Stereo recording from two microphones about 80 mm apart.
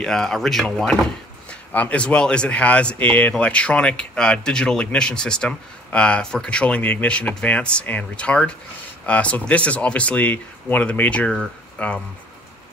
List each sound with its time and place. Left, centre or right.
0.0 s speech: centre
1.5 s speech: centre